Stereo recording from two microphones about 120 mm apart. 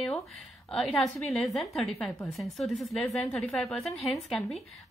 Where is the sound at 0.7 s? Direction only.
5° left (ahead or behind).